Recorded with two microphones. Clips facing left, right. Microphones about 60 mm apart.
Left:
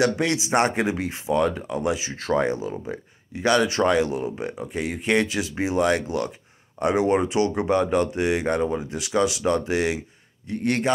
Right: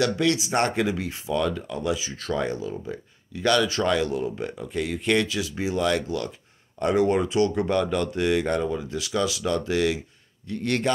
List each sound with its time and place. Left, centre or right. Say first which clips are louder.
0.0 s speech: left 1 dB; left